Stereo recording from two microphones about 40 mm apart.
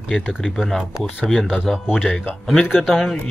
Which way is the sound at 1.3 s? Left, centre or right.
Centre.